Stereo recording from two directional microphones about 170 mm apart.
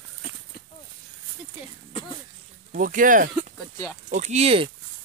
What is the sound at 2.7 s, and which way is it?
Speech, 50° right (ahead or behind).